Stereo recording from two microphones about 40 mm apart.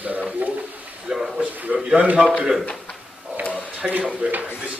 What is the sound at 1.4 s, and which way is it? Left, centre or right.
Speech, right.